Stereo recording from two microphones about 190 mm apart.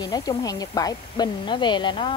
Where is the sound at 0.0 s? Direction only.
20° left (ahead or behind).